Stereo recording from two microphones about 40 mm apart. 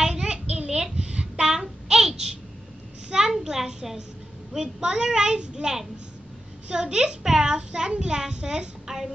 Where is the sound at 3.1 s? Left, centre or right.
Centre.